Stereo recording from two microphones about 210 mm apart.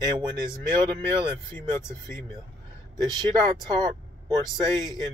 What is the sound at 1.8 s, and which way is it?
Speech, 15° left (ahead or behind).